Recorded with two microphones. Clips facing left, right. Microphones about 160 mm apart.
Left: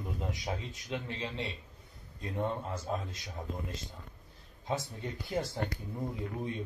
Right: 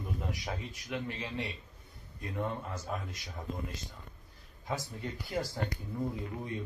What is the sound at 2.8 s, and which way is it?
Speech, 25° left (ahead or behind).